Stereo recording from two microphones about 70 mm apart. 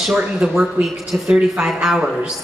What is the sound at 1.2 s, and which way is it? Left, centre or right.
Speech, centre.